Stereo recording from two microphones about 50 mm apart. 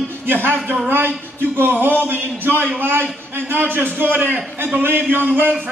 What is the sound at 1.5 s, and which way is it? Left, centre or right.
A man's voice, right.